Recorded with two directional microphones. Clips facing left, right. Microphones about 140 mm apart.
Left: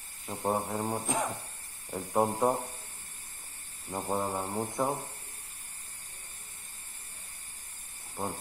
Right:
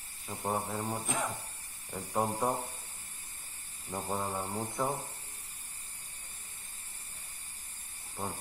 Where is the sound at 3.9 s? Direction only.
15° left (ahead or behind).